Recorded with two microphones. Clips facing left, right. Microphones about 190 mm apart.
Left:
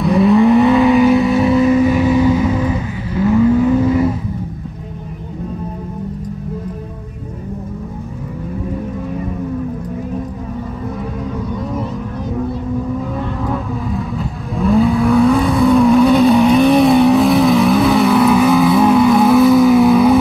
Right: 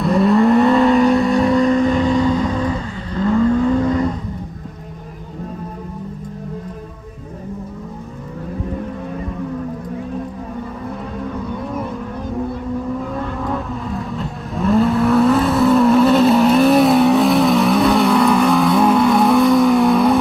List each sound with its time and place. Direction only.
0.0 s vehicle: centre (ahead or behind)
13.4 s vehicle: centre (ahead or behind)